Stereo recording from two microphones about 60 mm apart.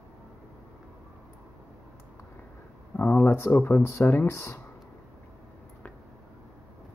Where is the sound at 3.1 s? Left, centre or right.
Left.